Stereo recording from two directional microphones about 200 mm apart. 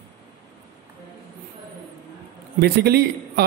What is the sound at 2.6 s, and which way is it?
Speech, 55° right (ahead or behind).